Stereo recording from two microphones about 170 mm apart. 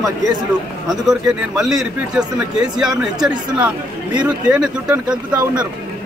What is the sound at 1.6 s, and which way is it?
Speech, 5° right (ahead or behind).